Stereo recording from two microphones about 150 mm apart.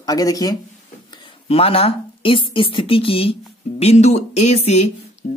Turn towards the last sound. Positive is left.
turn(degrees=50)  # may be behind; listen again after turning